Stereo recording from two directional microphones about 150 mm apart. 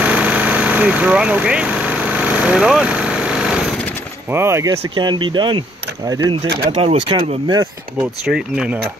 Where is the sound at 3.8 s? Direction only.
10° left (ahead or behind).